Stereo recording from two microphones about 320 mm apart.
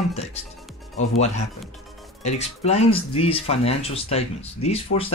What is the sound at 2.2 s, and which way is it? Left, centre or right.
Speech, left.